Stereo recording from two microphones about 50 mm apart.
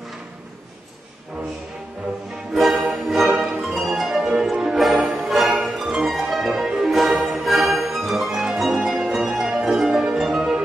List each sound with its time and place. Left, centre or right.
2.5 s music: centre
8.3 s mandolin: centre
8.5 s music: centre